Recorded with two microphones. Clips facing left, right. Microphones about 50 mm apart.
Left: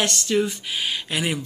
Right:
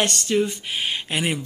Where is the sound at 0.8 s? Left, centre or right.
Centre.